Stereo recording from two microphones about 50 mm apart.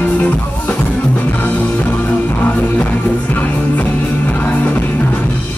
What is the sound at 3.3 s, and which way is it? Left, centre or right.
Music, left.